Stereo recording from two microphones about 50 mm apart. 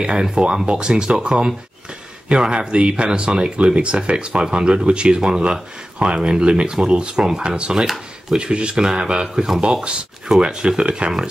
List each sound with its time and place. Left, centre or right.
0.0 s speech: centre
7.7 s speech: centre
8.4 s speech: right